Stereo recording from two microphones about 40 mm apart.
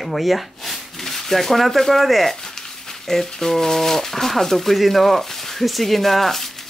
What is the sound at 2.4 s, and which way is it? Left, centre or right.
Speech, centre.